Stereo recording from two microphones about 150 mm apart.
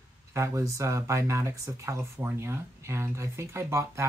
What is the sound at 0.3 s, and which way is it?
Speech, 20° right (ahead or behind).